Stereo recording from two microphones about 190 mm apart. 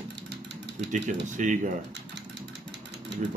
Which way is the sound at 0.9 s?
40° right (ahead or behind).